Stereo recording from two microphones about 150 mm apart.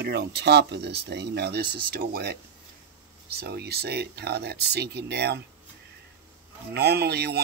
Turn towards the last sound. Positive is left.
turn(degrees=-90)